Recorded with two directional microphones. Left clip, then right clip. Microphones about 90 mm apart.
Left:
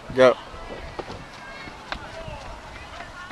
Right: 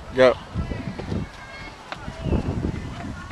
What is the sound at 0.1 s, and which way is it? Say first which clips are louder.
Speech: even; 5° right (ahead or behind).